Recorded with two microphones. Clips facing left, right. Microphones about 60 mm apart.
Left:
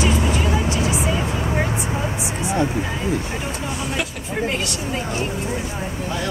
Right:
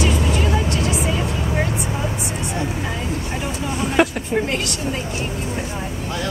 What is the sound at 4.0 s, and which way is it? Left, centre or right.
Vehicle, right.